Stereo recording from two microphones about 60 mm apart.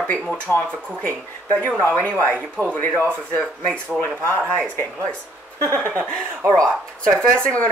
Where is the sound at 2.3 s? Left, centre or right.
Centre.